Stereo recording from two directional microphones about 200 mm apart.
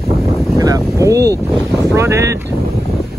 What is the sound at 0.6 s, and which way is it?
Boat, 15° right (ahead or behind).